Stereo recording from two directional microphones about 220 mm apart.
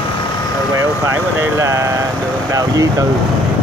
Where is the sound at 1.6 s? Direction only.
15° right (ahead or behind).